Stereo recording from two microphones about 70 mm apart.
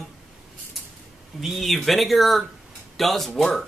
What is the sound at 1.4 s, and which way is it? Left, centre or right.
Speech, centre.